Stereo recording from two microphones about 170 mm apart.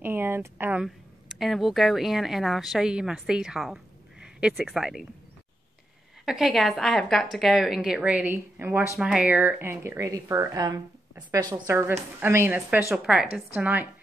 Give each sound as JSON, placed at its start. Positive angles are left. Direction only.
{"t": 0.0, "sound": "speech", "side_deg": -10}
{"t": 0.8, "sound": "speech", "side_deg": 0}
{"t": 6.2, "sound": "a woman's voice", "side_deg": 0}